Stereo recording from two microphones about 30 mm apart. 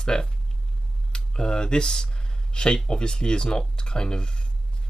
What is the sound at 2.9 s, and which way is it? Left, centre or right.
Speech, left.